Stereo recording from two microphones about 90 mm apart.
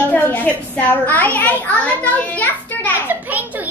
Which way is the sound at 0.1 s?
20° left (ahead or behind).